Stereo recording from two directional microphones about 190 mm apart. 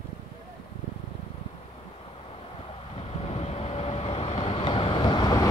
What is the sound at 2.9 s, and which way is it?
Vehicle, 30° left (ahead or behind).